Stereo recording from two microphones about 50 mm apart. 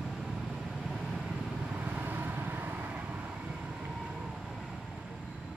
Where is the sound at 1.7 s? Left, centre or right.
Right.